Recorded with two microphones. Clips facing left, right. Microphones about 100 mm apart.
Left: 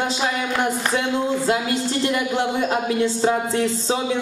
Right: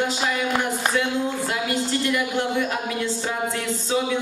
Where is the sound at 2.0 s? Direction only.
25° left (ahead or behind).